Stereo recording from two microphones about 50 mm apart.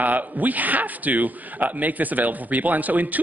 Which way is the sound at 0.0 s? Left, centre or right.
Right.